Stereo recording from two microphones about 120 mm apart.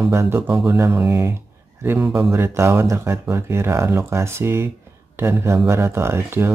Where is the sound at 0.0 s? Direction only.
20° right (ahead or behind).